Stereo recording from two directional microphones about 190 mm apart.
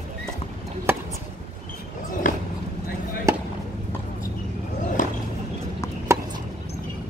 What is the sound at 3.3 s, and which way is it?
Basketball bounce, 15° right (ahead or behind).